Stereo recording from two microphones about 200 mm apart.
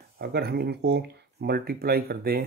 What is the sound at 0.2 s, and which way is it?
Speech, 55° right (ahead or behind).